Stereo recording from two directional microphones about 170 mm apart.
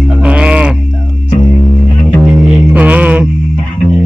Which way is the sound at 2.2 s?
5° right (ahead or behind).